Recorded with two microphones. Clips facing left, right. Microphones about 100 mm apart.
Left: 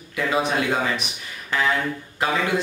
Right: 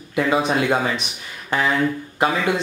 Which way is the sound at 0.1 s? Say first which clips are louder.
Right 3 dB; 25° right (ahead or behind).